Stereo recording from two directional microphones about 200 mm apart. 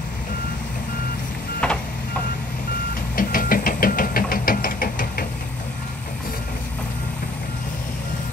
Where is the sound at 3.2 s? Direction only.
45° left (ahead or behind).